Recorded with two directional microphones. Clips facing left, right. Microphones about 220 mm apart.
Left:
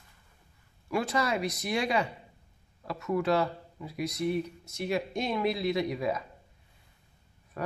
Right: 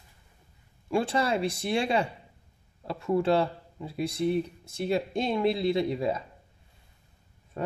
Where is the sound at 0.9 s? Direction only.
30° right (ahead or behind).